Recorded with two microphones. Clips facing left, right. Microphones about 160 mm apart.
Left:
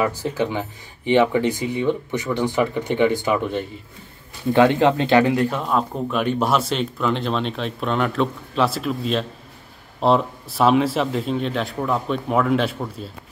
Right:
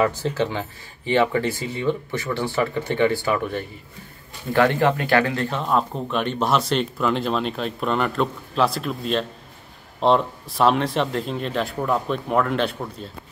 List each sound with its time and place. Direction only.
0.0 s speech: 10° left (ahead or behind)